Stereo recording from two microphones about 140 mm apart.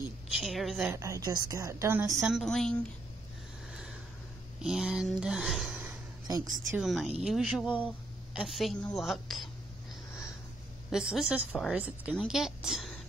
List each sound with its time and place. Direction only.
0.3 s speech: centre (ahead or behind)
0.9 s a woman's voice: 20° right (ahead or behind)
2.0 s speech: centre (ahead or behind)
4.6 s speech: 5° right (ahead or behind)
6.2 s a woman's voice: 30° right (ahead or behind)
6.8 s speech: centre (ahead or behind)
10.9 s a woman's voice: 5° right (ahead or behind)